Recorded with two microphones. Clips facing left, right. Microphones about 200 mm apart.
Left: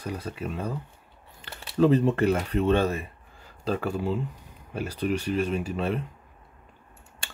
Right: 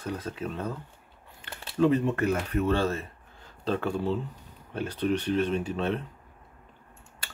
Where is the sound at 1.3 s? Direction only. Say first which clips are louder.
Left 2 dB; 35° left (ahead or behind); by 6.0 s 10° left (ahead or behind).